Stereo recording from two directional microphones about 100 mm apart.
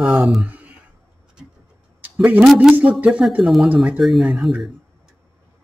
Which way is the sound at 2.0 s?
20° right (ahead or behind).